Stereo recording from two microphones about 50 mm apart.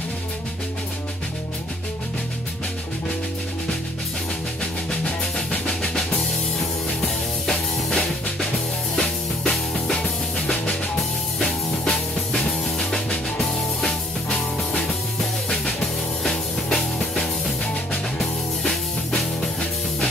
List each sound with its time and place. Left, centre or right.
5.0 s music: centre
10.4 s music: left
11.0 s music: centre
14.3 s music: left
16.2 s music: centre